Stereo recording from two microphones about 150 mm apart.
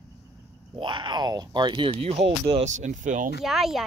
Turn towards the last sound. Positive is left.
turn(degrees=0)  # may be behind; listen again after turning